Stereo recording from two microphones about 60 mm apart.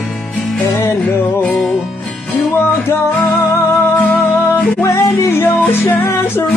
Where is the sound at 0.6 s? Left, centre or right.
Left.